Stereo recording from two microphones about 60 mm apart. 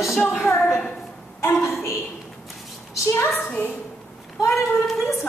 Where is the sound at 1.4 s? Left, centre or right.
Left.